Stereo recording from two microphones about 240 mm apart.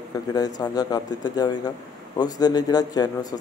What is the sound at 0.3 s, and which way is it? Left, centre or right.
Speech, centre.